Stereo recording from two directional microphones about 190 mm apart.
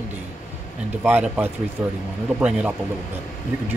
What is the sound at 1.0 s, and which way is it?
Speech, 5° right (ahead or behind).